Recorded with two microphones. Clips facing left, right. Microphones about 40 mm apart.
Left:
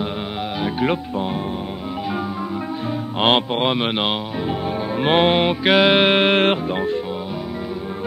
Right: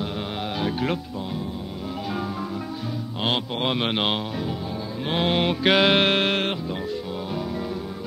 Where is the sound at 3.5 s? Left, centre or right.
Centre.